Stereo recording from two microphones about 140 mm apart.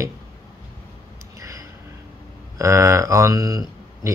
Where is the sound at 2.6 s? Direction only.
20° right (ahead or behind).